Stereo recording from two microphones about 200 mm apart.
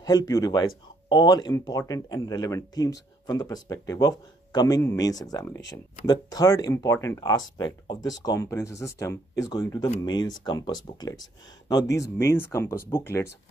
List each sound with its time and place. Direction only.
0.0 s speech: 20° left (ahead or behind)